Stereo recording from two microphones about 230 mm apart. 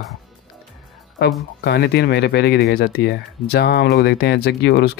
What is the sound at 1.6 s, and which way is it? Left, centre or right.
Speech, left.